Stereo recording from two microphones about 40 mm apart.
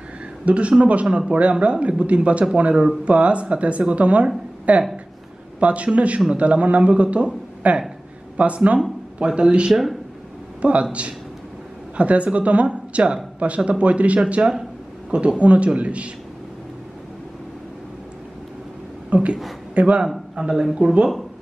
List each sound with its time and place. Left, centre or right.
0.5 s speech: right
9.7 s speech: centre
10.6 s speech: right
19.0 s a man's voice: right
20.3 s speech: centre